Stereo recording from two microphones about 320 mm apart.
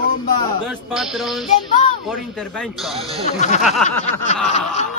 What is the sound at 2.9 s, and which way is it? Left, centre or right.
Speech, centre.